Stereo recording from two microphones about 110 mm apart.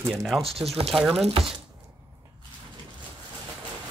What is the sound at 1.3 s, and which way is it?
Speech, 55° right (ahead or behind).